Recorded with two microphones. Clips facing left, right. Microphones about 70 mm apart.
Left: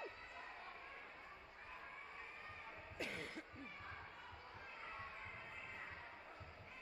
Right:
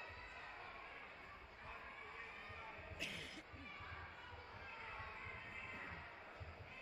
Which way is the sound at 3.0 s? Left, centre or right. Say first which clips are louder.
Left 6 dB; left.